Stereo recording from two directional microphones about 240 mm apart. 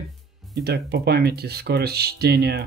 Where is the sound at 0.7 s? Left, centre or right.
Right.